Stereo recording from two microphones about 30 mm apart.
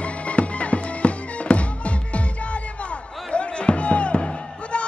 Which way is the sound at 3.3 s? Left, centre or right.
Left.